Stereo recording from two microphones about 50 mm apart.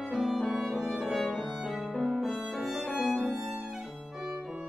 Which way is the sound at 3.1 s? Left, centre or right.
Centre.